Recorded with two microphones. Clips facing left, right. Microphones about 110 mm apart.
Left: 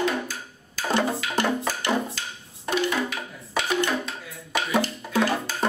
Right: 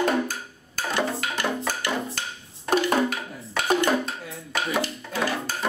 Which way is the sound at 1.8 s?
25° left (ahead or behind).